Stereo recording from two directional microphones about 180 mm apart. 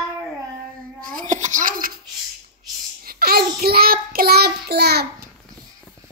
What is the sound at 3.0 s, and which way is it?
Child singing, 55° right (ahead or behind).